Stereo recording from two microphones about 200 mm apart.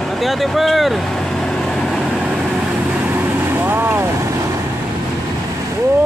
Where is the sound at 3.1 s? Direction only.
10° right (ahead or behind).